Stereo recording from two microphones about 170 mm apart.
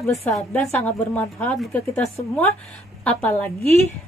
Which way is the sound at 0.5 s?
5° left (ahead or behind).